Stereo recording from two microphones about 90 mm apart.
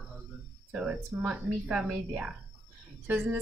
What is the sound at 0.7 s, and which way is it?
A woman's voice, 10° right (ahead or behind).